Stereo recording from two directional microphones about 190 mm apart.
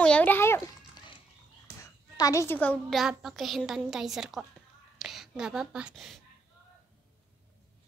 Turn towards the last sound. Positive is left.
turn(degrees=0)  # may be behind; listen again after turning